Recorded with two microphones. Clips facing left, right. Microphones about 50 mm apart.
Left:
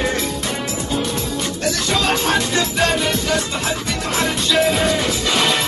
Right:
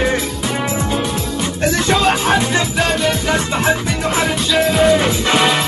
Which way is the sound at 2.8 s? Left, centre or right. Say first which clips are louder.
Right 1 dB; centre.